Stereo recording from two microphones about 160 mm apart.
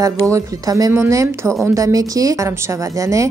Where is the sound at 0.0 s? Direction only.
20° right (ahead or behind).